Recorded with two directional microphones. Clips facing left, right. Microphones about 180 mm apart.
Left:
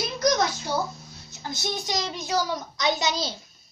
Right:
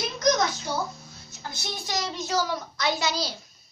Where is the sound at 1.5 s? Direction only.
20° left (ahead or behind).